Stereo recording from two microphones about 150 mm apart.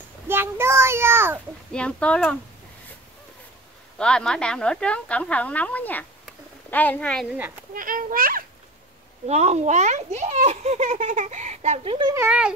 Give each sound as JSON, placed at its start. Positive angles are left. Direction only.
{"t": 0.3, "sound": "child singing", "side_deg": -15}
{"t": 1.7, "sound": "speech", "side_deg": 5}
{"t": 4.0, "sound": "speech", "side_deg": 5}
{"t": 7.7, "sound": "a child's voice", "side_deg": -70}
{"t": 9.3, "sound": "speech", "side_deg": -45}
{"t": 12.3, "sound": "speech", "side_deg": -5}